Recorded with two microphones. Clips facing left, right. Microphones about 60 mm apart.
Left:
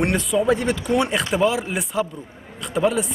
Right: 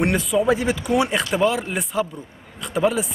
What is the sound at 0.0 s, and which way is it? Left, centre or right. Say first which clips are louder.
Speech: right 1 dB; centre.